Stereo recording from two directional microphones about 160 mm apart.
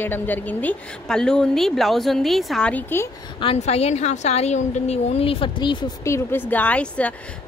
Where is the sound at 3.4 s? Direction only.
40° left (ahead or behind).